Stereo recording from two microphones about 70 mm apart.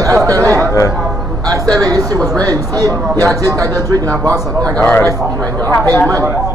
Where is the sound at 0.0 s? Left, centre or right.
Right.